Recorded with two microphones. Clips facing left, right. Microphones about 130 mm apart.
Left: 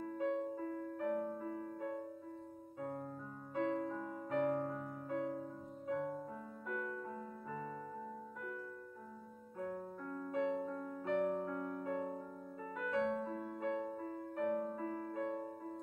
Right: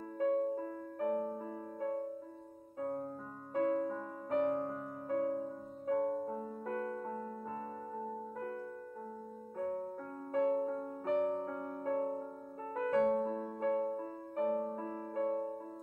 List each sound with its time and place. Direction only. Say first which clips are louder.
0.2 s music: right 7 dB; 40° right (ahead or behind)
8.0 s music: right 6 dB; 40° right (ahead or behind)
9.6 s music: right 5 dB; 40° right (ahead or behind)